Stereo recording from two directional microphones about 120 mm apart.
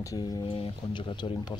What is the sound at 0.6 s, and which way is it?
Speech, 45° left (ahead or behind).